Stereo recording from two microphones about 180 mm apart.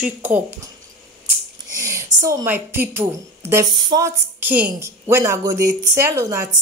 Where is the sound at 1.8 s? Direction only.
20° right (ahead or behind).